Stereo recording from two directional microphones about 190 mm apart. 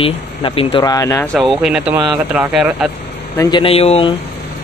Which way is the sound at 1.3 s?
Centre (ahead or behind).